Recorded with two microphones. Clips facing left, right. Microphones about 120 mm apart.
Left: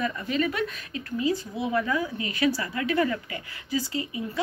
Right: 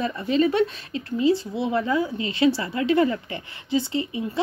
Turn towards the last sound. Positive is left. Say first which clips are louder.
# right 4 dB
turn(degrees=-30)  # may be behind; listen again after turning